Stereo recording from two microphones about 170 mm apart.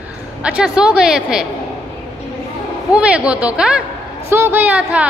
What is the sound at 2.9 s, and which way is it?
A woman's voice, 5° right (ahead or behind).